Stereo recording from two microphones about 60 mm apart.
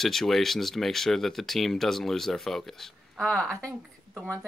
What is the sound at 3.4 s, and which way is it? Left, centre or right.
Speech, right.